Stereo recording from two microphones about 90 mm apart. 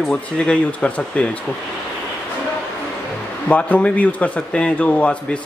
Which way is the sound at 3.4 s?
15° left (ahead or behind).